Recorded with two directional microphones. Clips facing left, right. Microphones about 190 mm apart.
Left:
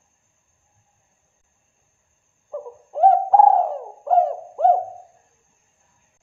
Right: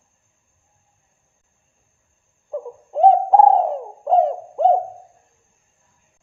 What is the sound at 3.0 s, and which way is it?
Bird, 20° right (ahead or behind).